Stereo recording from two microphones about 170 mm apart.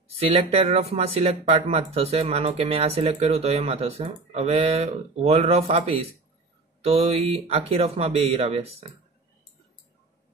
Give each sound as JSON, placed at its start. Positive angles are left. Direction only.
{"t": 0.2, "sound": "speech", "side_deg": -35}